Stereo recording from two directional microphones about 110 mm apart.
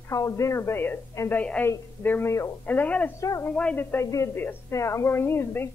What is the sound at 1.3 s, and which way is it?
A woman's voice, 15° left (ahead or behind).